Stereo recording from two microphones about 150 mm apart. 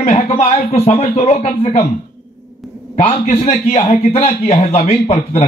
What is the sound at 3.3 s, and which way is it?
A man's voice, 50° left (ahead or behind).